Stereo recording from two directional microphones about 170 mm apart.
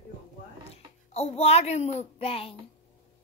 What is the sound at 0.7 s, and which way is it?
Speech, 40° left (ahead or behind).